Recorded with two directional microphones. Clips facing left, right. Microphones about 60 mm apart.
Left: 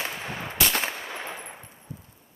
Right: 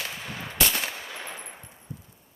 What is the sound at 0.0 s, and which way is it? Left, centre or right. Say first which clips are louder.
Gunshot: left 3 dB; left.